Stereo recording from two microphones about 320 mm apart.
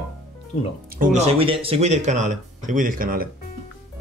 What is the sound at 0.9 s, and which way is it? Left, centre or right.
Speech, right.